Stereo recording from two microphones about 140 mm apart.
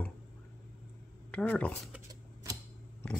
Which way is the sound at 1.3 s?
10° left (ahead or behind).